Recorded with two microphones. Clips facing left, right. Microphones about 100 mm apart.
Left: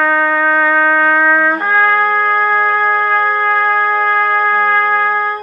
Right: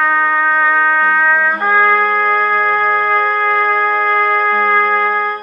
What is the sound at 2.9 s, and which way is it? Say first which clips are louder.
Music: even; 5° left (ahead or behind).